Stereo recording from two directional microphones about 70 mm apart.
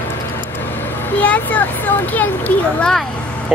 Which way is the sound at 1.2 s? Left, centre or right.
Left.